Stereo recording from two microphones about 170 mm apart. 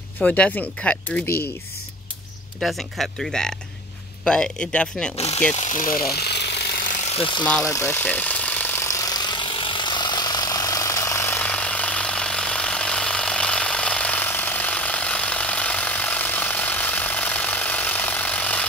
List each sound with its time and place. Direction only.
0.2 s speech: 10° left (ahead or behind)
2.6 s speech: centre (ahead or behind)
5.5 s speech: 45° left (ahead or behind)
6.0 s jackhammer: 70° left (ahead or behind)
7.2 s speech: 30° left (ahead or behind)
7.6 s jackhammer: 15° left (ahead or behind)